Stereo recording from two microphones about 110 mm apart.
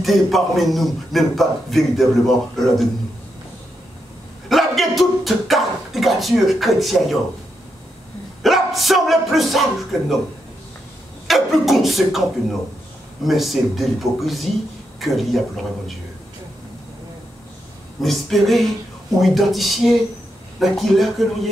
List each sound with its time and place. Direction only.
0.0 s a man's voice: centre (ahead or behind)
4.5 s a man's voice: centre (ahead or behind)
8.4 s a man's voice: centre (ahead or behind)
11.2 s a man's voice: centre (ahead or behind)
18.0 s a man's voice: centre (ahead or behind)